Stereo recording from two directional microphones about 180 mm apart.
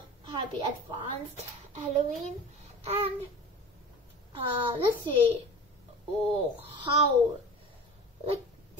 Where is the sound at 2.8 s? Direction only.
35° right (ahead or behind).